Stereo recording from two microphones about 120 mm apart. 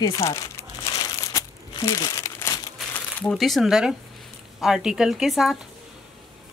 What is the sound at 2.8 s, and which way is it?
Crumpling, 5° right (ahead or behind).